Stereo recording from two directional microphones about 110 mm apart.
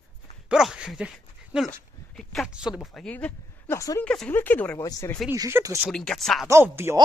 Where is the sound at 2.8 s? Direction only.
5° left (ahead or behind).